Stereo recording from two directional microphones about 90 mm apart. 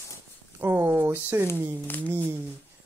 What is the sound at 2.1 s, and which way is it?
Speech, 25° right (ahead or behind).